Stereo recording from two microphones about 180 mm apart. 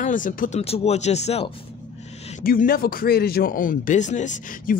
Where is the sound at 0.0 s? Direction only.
45° left (ahead or behind).